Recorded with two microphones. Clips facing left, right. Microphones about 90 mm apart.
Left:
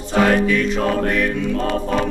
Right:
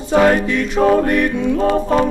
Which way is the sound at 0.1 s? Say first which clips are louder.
Right 3 dB; 10° right (ahead or behind).